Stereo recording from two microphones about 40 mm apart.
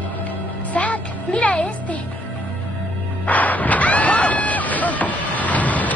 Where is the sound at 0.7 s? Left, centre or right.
Left.